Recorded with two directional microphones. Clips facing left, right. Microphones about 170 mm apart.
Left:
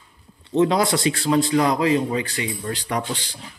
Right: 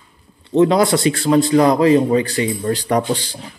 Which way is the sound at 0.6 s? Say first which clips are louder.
Right 5 dB; 55° right (ahead or behind).